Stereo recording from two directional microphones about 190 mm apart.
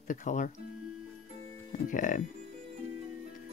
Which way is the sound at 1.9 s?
45° left (ahead or behind).